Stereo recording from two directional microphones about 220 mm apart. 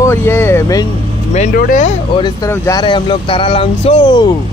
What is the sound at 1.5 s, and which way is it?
Speech, 35° left (ahead or behind).